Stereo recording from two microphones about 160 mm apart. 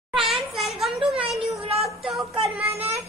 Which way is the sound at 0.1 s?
Centre (ahead or behind).